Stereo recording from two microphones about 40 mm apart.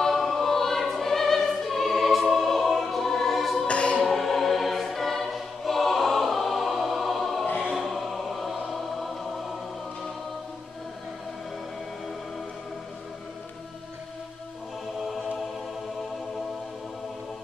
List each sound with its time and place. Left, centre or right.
0.0 s choir: centre
3.6 s choir: left
4.0 s choir: centre
7.8 s music: centre